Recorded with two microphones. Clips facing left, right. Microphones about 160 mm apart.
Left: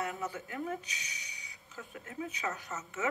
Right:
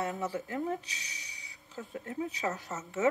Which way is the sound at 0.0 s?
40° right (ahead or behind).